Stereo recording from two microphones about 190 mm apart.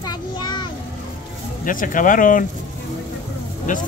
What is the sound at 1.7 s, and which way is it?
Speech, 45° left (ahead or behind).